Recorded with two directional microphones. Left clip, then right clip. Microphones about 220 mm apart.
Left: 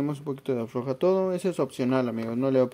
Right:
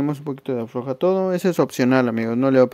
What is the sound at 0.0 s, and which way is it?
Speech, 25° right (ahead or behind).